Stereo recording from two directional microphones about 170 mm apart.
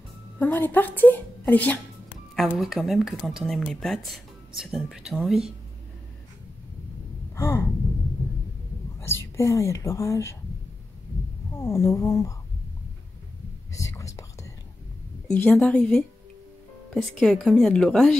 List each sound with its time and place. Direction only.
0.4 s a woman's voice: 10° left (ahead or behind)
2.3 s speech: centre (ahead or behind)
7.3 s gasp: 15° left (ahead or behind)
9.0 s a woman's voice: 15° left (ahead or behind)
11.5 s a woman's voice: 15° left (ahead or behind)
13.7 s whispering: 20° left (ahead or behind)
15.3 s speech: 5° left (ahead or behind)
17.2 s speech: centre (ahead or behind)